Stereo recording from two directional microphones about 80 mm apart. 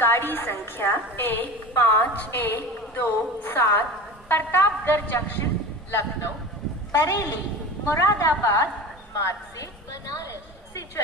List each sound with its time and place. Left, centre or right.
0.0 s a woman's voice: left
6.9 s a woman's voice: left